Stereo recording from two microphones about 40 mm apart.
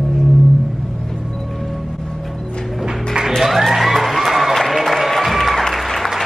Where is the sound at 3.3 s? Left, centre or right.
Centre.